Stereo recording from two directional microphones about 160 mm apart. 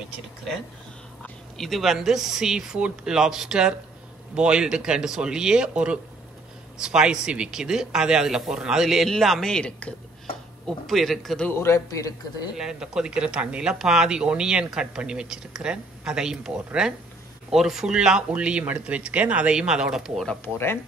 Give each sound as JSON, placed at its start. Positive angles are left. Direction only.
{"t": 1.2, "sound": "a man's voice", "side_deg": 0}
{"t": 12.5, "sound": "speech", "side_deg": -5}
{"t": 20.4, "sound": "a man's voice", "side_deg": 15}